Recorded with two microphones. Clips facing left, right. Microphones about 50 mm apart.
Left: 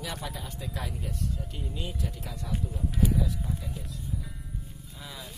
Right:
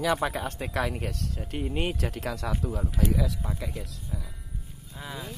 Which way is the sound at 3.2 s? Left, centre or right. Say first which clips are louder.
Right 2 dB; right.